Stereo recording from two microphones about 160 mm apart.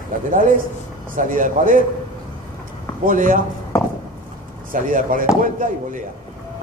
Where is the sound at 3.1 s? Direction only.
55° right (ahead or behind).